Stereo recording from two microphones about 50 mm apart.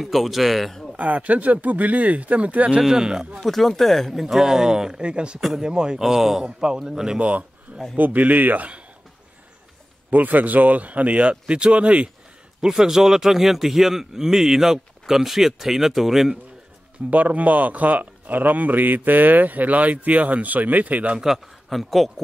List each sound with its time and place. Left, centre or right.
0.0 s speech: centre
0.9 s speech: right
2.8 s speech: centre
3.4 s speech: centre
7.2 s a man's voice: right
10.1 s speech: right
12.6 s speech: centre
17.1 s speech: right
21.2 s a man's voice: centre